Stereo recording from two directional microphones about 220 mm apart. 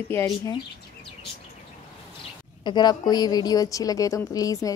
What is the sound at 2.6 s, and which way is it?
A woman's voice, 20° left (ahead or behind).